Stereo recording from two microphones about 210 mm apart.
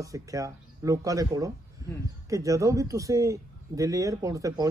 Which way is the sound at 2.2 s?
15° right (ahead or behind).